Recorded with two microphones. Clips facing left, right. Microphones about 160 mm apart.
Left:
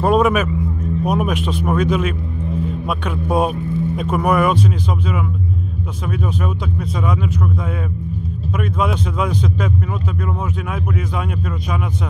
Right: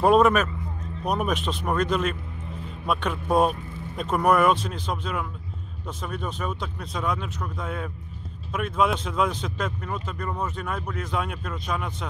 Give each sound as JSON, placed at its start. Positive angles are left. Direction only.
{"t": 0.0, "sound": "vehicle", "side_deg": 0}
{"t": 1.0, "sound": "speech", "side_deg": 5}
{"t": 10.7, "sound": "speech", "side_deg": 0}